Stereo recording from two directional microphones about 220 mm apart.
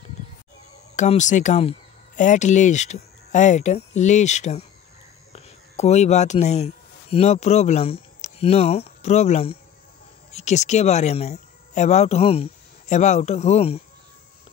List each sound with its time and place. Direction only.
0.9 s speech: 35° left (ahead or behind)